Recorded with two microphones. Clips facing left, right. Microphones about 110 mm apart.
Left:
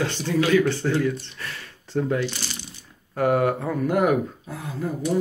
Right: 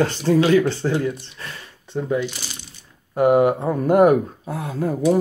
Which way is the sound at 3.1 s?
20° right (ahead or behind).